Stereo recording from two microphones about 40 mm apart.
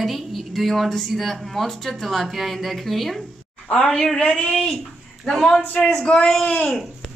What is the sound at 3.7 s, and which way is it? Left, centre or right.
Speech, left.